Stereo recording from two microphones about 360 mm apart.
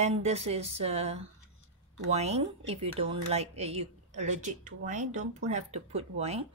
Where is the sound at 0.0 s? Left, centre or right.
Centre.